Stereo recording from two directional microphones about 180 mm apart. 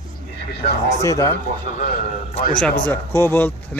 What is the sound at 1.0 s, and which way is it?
Speech, 20° left (ahead or behind).